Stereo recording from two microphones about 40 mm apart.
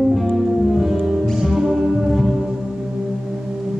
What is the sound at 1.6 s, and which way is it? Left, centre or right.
Music, centre.